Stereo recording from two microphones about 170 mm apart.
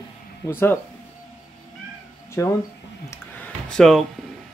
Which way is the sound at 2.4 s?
15° left (ahead or behind).